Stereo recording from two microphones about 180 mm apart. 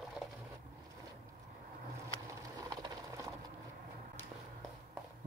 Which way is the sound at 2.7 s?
20° right (ahead or behind).